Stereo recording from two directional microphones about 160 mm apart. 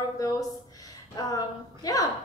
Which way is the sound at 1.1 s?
25° left (ahead or behind).